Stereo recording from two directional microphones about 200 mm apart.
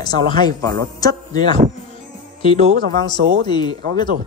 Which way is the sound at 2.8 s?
20° left (ahead or behind).